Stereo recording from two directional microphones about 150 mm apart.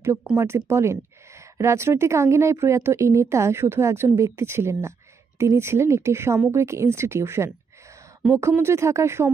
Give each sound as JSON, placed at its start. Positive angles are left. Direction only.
{"t": 0.4, "sound": "a woman's voice", "side_deg": -15}